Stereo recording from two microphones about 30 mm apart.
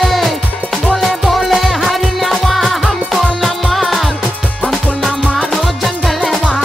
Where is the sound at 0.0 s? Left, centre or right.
Centre.